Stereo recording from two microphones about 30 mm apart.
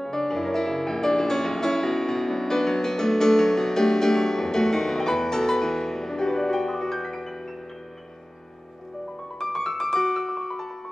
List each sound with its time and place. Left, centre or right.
0.0 s music: centre
9.4 s piano: centre